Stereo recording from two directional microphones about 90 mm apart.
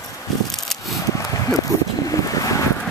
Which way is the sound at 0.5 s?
5° left (ahead or behind).